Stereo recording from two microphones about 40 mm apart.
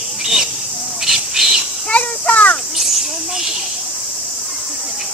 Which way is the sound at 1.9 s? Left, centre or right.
Left.